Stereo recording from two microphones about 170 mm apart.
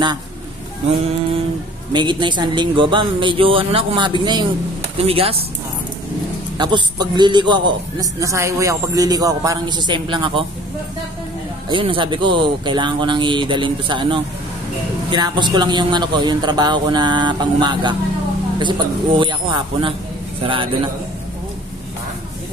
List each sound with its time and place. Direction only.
1.9 s a man's voice: 25° right (ahead or behind)
6.6 s a man's voice: 25° right (ahead or behind)
11.7 s a man's voice: 30° right (ahead or behind)